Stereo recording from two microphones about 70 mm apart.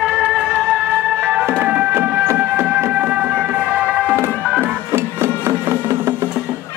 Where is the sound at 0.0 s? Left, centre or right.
Centre.